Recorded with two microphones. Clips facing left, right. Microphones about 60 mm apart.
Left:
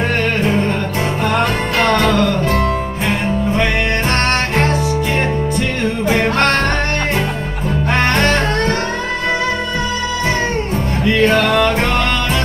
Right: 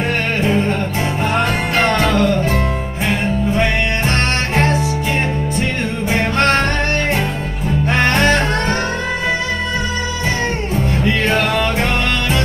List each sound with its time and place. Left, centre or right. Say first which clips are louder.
2.1 s music: even; right
11.1 s music: left 7 dB; left